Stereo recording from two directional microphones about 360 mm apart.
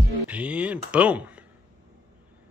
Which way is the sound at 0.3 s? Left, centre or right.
Centre.